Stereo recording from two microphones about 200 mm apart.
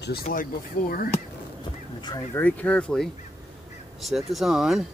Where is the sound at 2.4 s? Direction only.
10° left (ahead or behind).